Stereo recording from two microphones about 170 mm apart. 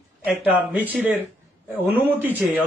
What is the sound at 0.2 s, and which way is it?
Speech, 10° right (ahead or behind).